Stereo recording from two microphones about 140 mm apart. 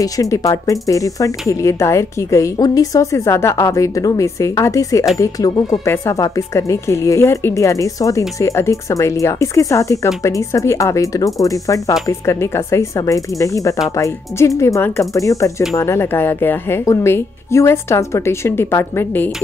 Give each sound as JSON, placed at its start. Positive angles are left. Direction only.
{"t": 0.0, "sound": "speech", "side_deg": 25}